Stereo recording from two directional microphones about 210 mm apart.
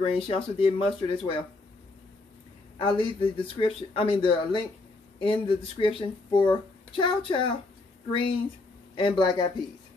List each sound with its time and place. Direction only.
0.0 s speech: 25° left (ahead or behind)
2.8 s speech: 25° left (ahead or behind)